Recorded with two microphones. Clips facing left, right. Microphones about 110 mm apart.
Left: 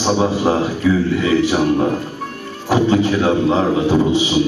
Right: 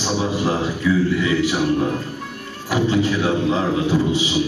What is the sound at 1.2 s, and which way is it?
A man's voice, 40° left (ahead or behind).